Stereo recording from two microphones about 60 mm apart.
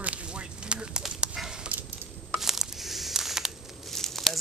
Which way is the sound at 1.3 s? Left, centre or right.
Centre.